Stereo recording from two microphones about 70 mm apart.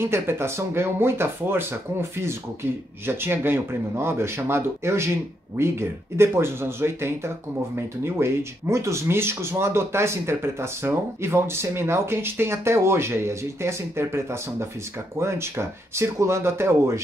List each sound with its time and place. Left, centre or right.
0.0 s speech: right